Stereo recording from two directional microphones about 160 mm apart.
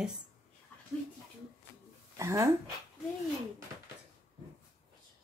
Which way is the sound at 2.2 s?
20° right (ahead or behind).